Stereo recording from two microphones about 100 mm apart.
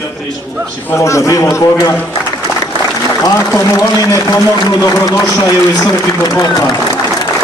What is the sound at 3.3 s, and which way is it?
A man's voice, 35° left (ahead or behind).